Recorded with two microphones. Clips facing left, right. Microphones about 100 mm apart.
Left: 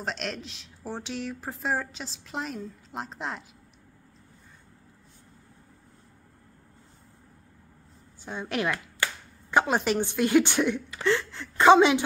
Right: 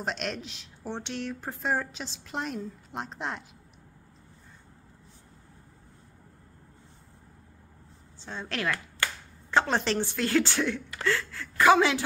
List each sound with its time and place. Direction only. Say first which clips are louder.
0.0 s speech: right 1 dB; centre (ahead or behind)
8.2 s a woman's voice: left 4 dB; 15° left (ahead or behind)